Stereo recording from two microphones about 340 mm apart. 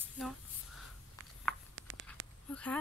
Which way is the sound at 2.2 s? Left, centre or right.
Right.